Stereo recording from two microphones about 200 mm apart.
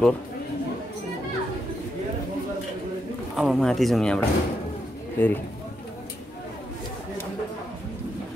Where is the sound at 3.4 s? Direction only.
Centre (ahead or behind).